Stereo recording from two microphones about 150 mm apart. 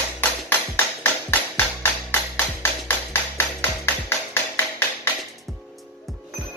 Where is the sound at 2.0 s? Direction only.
15° left (ahead or behind).